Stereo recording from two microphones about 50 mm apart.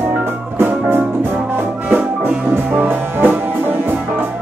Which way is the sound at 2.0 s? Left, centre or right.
Right.